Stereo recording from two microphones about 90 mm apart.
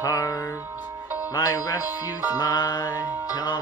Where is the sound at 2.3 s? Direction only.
45° left (ahead or behind).